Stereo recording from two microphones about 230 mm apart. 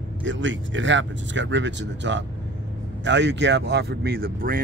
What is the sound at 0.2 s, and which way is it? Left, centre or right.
Speech, right.